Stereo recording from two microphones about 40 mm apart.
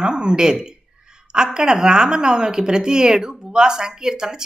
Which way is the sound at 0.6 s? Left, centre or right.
Centre.